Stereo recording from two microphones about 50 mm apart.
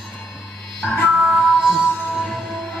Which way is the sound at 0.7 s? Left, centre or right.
Left.